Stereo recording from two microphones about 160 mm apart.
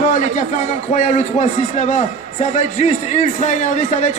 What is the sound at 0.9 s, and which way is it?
A man's voice, 50° left (ahead or behind).